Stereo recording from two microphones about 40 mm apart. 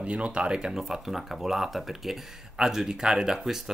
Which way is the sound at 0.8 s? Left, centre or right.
Centre.